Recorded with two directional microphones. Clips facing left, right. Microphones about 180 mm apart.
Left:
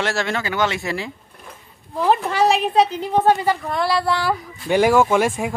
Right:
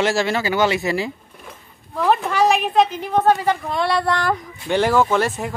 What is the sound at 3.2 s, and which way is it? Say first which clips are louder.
Speech: right 1 dB; 5° left (ahead or behind).